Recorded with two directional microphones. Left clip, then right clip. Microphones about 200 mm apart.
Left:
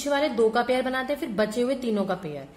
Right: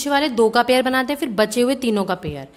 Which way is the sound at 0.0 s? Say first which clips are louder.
Right 5 dB; 45° right (ahead or behind).